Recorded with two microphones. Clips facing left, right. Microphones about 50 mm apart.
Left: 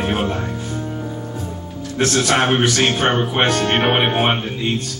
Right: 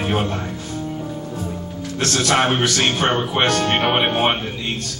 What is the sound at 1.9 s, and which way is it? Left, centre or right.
Speech, left.